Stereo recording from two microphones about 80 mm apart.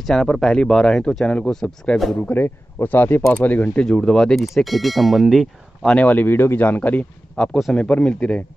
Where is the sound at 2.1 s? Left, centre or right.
Centre.